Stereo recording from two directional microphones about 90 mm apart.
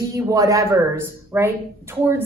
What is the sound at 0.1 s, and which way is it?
A woman's voice, 35° right (ahead or behind).